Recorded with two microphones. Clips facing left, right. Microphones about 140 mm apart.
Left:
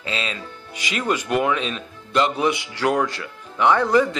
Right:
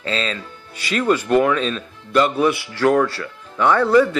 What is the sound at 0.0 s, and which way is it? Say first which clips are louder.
Speech: right 4 dB; 15° left (ahead or behind).